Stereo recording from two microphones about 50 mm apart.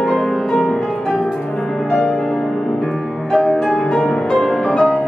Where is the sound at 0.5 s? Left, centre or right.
Centre.